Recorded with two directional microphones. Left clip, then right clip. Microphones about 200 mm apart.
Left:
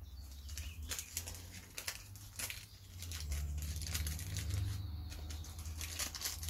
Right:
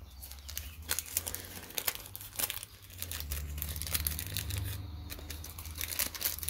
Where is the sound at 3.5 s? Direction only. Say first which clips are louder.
Right 6 dB; 35° right (ahead or behind).